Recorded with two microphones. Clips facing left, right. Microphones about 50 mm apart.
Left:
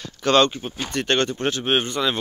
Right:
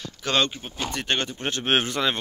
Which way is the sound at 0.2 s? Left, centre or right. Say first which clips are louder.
Left 7 dB; centre.